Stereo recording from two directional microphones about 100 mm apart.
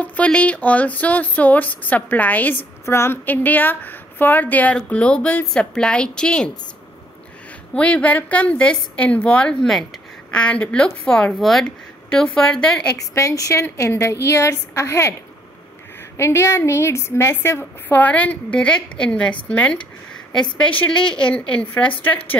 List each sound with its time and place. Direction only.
0.0 s a woman's voice: 15° left (ahead or behind)
7.7 s a woman's voice: 10° left (ahead or behind)
12.9 s a woman's voice: 35° left (ahead or behind)
16.2 s a woman's voice: 25° left (ahead or behind); by 19.3 s 10° left (ahead or behind)
20.5 s a woman's voice: 10° left (ahead or behind)